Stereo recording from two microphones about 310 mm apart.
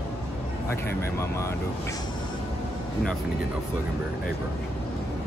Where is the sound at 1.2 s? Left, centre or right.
Centre.